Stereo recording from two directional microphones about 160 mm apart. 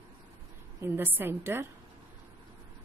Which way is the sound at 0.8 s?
15° right (ahead or behind).